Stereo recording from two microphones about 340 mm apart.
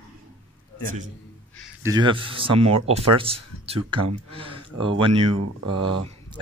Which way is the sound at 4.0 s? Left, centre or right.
Right.